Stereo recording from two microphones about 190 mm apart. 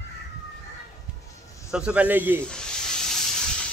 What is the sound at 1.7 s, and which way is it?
Speech, 5° right (ahead or behind).